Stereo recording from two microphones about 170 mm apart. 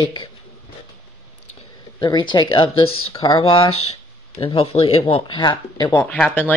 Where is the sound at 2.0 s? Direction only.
25° left (ahead or behind).